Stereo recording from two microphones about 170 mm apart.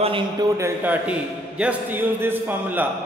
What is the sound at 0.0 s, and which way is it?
Speech, 30° right (ahead or behind).